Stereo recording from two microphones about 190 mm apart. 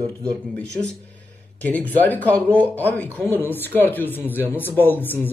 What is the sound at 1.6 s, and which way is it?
Speech, 10° left (ahead or behind).